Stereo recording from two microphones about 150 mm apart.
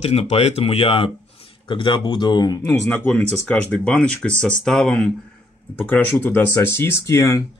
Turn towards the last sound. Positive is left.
turn(degrees=20)  # may be behind; listen again after turning